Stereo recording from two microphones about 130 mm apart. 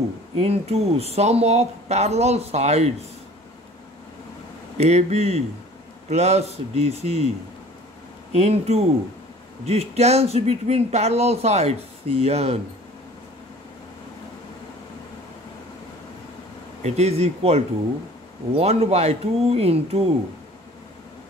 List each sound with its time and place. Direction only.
0.4 s speech: 50° right (ahead or behind)
4.7 s speech: 55° right (ahead or behind)
8.3 s speech: 55° right (ahead or behind)
16.8 s speech: 55° right (ahead or behind)